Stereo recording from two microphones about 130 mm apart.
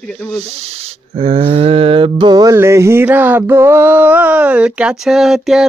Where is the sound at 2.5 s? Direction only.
20° right (ahead or behind).